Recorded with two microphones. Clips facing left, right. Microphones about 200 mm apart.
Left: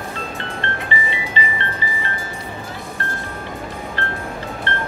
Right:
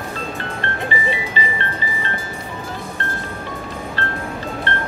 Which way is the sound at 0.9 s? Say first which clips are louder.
Right 2 dB; 20° left (ahead or behind).